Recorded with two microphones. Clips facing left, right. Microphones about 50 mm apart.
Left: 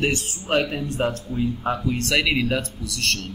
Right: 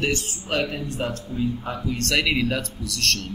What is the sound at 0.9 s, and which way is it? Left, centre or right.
Speech, left.